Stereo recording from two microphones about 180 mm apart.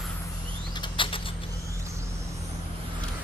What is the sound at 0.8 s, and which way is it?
Rodents, 30° left (ahead or behind).